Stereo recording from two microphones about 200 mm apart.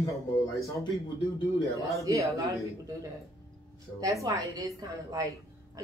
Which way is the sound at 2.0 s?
15° right (ahead or behind).